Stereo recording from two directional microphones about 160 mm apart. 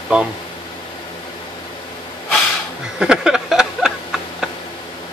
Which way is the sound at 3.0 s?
5° right (ahead or behind).